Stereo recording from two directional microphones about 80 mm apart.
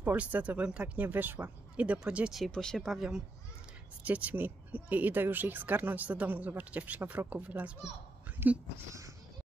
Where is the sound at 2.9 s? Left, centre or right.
Centre.